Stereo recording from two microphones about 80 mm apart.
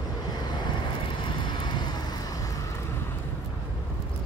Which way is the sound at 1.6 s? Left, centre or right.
Left.